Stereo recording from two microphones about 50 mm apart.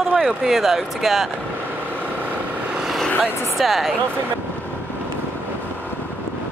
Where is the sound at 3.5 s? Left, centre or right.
Centre.